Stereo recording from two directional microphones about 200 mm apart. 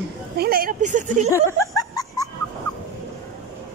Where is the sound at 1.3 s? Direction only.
15° left (ahead or behind).